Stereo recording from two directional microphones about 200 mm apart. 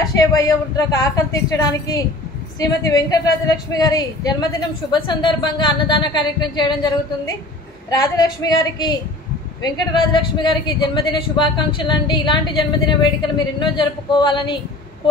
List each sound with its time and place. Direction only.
0.1 s a woman's voice: 15° left (ahead or behind)
7.9 s speech: 20° left (ahead or behind)